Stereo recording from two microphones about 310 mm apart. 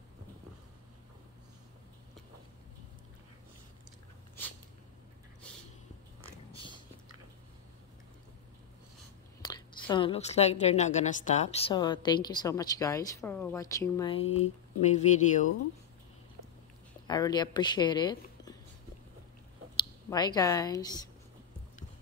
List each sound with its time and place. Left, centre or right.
6.5 s biting: centre
9.4 s a woman's voice: centre
17.1 s a woman's voice: centre
19.8 s a woman's voice: centre